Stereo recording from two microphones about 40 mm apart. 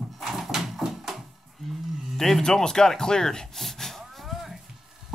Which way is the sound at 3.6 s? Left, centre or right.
Centre.